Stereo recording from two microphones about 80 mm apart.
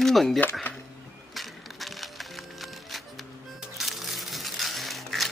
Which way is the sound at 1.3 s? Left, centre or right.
Centre.